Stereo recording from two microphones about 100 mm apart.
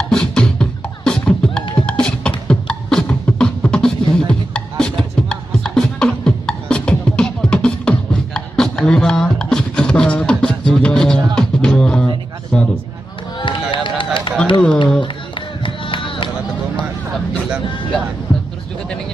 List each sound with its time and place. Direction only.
0.1 s music: 5° left (ahead or behind)
1.8 s beatboxing: 10° left (ahead or behind)
10.7 s music: 10° left (ahead or behind)
12.5 s a sound: 5° left (ahead or behind)
13.4 s run: 55° left (ahead or behind)